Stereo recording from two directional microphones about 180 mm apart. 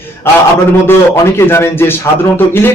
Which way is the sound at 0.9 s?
15° left (ahead or behind).